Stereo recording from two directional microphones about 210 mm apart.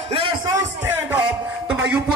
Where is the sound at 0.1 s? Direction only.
25° right (ahead or behind).